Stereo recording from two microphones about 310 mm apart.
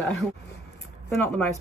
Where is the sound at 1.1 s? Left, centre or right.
Centre.